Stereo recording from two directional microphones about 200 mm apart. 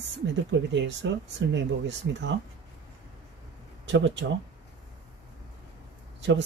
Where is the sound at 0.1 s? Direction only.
65° right (ahead or behind).